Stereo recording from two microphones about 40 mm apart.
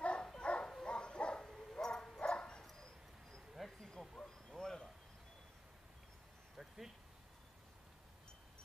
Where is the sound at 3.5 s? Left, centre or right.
Centre.